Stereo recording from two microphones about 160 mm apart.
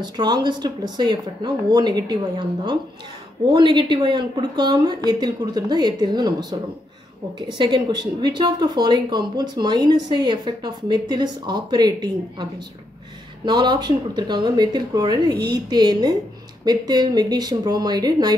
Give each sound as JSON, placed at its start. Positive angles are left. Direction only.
{"t": 0.0, "sound": "speech", "side_deg": -25}
{"t": 7.4, "sound": "speech", "side_deg": -30}
{"t": 13.5, "sound": "speech", "side_deg": -25}